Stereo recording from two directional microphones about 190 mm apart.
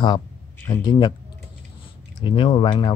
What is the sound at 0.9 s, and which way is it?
Speech, 20° left (ahead or behind).